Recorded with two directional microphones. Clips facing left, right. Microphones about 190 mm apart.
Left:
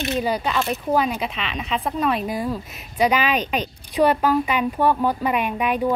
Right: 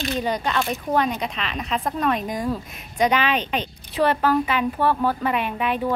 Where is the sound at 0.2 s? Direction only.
5° left (ahead or behind).